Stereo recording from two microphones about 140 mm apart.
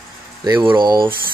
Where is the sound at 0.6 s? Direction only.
30° right (ahead or behind).